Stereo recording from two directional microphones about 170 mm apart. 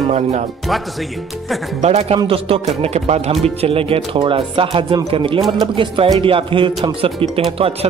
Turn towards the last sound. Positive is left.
turn(degrees=-30)  # may be behind; listen again after turning